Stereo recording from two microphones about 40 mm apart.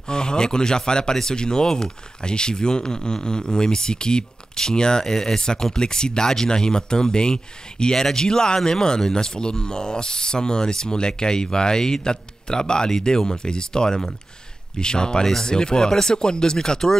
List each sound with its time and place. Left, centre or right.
0.1 s speech: centre